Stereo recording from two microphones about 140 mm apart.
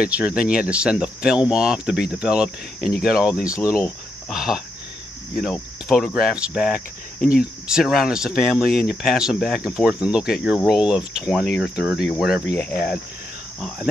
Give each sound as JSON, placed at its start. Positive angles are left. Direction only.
{"t": 0.0, "sound": "speech", "side_deg": -10}
{"t": 3.5, "sound": "speech", "side_deg": 25}
{"t": 4.3, "sound": "speech", "side_deg": -5}
{"t": 5.4, "sound": "cricket", "side_deg": 0}
{"t": 6.1, "sound": "speech", "side_deg": -5}
{"t": 13.6, "sound": "cricket", "side_deg": 0}